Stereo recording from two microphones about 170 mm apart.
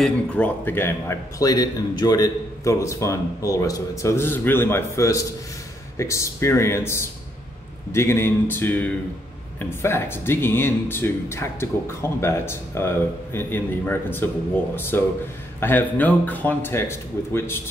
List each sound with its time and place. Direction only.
0.0 s a man's voice: 10° left (ahead or behind)